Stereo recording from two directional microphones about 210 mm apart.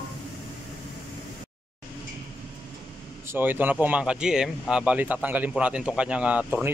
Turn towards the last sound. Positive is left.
turn(degrees=-5)  # may be behind; listen again after turning